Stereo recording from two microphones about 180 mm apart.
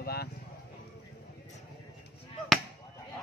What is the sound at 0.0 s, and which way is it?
Clip-clop, 60° left (ahead or behind).